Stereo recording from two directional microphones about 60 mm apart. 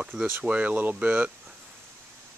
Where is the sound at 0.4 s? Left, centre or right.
Right.